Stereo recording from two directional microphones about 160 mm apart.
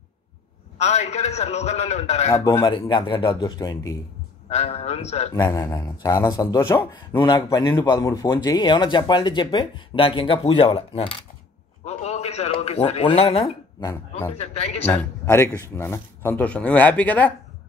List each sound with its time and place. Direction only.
0.7 s a man's voice: 40° left (ahead or behind)
2.3 s speech: 20° left (ahead or behind)
4.5 s a man's voice: 40° left (ahead or behind)
5.3 s speech: 25° left (ahead or behind)
11.8 s a sound: 40° left (ahead or behind)
14.3 s a man's voice: 45° left (ahead or behind)
14.9 s a man's voice: 10° left (ahead or behind)